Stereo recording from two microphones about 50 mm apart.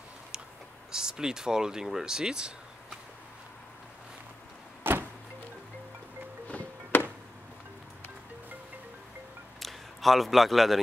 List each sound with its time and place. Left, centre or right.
0.9 s speech: centre
4.9 s vehicle: right
6.4 s music: left
9.6 s a sound: centre